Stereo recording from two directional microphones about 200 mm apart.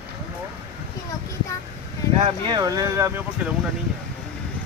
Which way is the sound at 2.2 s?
20° right (ahead or behind).